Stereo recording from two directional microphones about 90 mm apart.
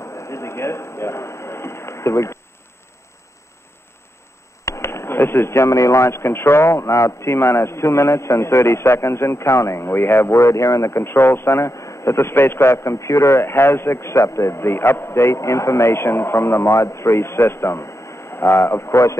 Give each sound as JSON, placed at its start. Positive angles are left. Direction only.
{"t": 0.0, "sound": "a man's voice", "side_deg": 30}
{"t": 4.6, "sound": "speech", "side_deg": 30}